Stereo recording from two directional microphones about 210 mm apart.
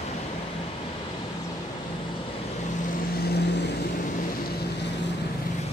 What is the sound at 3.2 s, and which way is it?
Vehicle, 50° left (ahead or behind).